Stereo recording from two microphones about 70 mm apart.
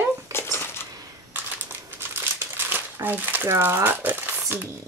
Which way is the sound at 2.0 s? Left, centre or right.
Right.